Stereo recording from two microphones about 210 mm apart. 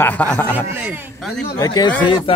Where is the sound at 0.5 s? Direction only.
10° right (ahead or behind).